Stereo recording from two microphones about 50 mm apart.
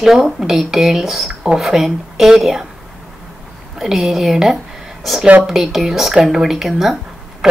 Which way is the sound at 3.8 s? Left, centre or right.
Centre.